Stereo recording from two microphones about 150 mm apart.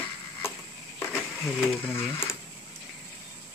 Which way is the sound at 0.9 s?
10° left (ahead or behind).